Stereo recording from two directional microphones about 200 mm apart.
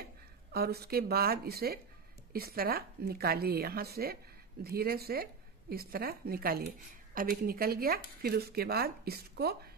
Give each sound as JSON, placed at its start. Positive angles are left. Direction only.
{"t": 0.0, "sound": "speech", "side_deg": -50}